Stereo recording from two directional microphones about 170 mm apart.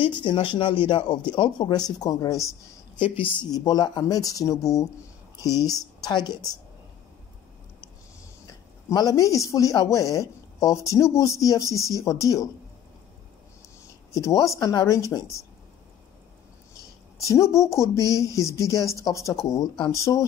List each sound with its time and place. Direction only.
0.2 s speech: 30° left (ahead or behind)
3.0 s a woman's voice: 30° left (ahead or behind)
8.8 s speech: 20° left (ahead or behind)
14.1 s speech: 20° left (ahead or behind)
17.2 s speech: 15° left (ahead or behind)